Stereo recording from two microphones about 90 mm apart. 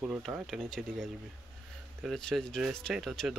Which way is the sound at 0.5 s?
5° left (ahead or behind).